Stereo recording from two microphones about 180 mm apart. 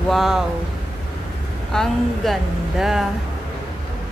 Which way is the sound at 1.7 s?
5° left (ahead or behind).